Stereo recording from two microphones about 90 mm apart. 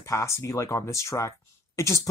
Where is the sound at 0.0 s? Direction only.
35° left (ahead or behind).